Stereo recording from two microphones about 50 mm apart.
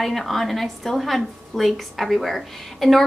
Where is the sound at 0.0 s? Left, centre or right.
Centre.